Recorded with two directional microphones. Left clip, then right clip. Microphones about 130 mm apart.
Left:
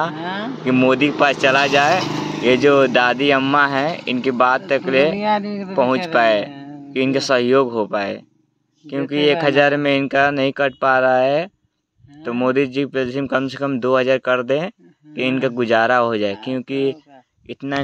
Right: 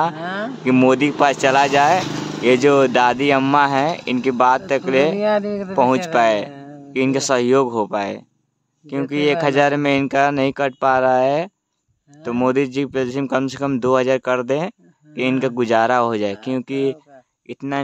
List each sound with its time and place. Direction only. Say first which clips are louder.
0.0 s speech: right 2 dB; 35° right (ahead or behind)
2.0 s vehicle: even; 20° right (ahead or behind)
2.5 s speech: even; 35° right (ahead or behind)